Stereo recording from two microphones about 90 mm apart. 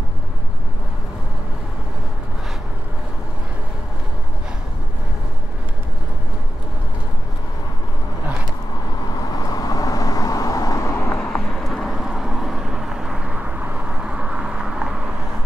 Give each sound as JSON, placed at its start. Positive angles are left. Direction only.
{"t": 9.3, "sound": "vehicle", "side_deg": 45}
{"t": 11.0, "sound": "vehicle", "side_deg": 20}
{"t": 11.4, "sound": "vehicle", "side_deg": 5}